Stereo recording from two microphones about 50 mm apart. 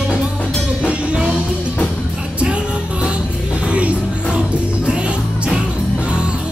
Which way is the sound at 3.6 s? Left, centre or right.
Right.